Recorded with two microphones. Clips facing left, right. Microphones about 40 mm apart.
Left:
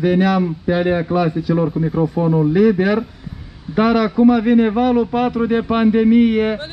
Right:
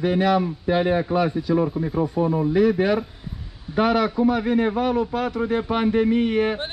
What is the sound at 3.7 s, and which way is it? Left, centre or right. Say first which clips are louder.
Speech: left 5 dB; left.